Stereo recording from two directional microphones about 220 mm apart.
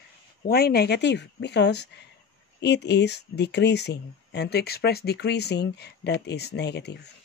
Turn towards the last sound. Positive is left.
turn(degrees=50)  # may be behind; listen again after turning